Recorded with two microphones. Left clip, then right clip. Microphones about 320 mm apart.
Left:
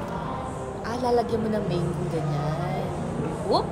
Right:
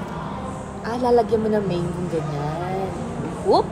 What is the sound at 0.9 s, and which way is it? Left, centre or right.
Speech, centre.